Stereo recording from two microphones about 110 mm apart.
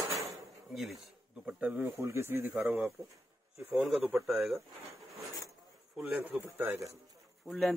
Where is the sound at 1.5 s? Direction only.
15° right (ahead or behind).